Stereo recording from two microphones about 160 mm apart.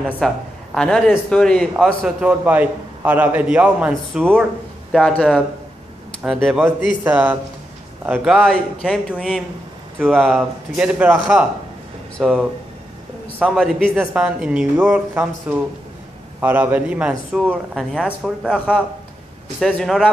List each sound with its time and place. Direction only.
0.2 s a man's voice: 5° left (ahead or behind)
4.9 s a man's voice: 5° left (ahead or behind)
19.6 s a man's voice: centre (ahead or behind)